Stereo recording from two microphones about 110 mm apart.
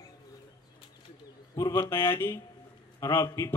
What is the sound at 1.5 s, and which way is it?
Speech, 25° left (ahead or behind).